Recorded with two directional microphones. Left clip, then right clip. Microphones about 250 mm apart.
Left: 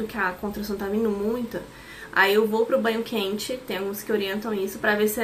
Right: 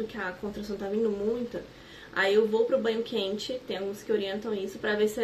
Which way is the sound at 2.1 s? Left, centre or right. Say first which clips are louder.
Left 4 dB; centre.